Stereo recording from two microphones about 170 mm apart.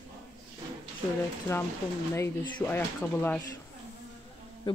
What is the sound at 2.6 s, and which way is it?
Speech, 10° left (ahead or behind).